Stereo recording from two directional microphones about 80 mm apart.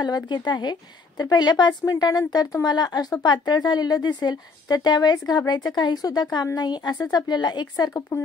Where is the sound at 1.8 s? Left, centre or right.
Left.